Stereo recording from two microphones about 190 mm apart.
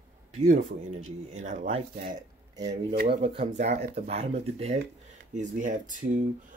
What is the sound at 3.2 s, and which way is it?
Speech, 35° right (ahead or behind).